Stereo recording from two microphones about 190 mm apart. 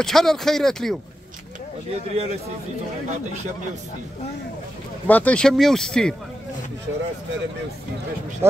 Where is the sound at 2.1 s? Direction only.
35° right (ahead or behind).